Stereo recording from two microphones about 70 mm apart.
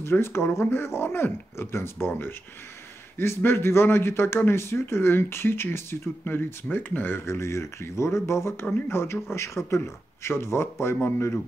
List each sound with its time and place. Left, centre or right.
0.0 s speech: left